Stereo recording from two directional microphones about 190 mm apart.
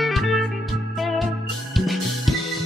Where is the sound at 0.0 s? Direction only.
Centre (ahead or behind).